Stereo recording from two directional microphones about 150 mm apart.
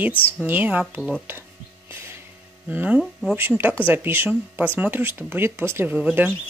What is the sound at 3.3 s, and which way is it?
Speech, 15° right (ahead or behind).